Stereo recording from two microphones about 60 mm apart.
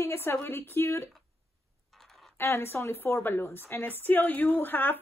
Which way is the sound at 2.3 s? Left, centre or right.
Left.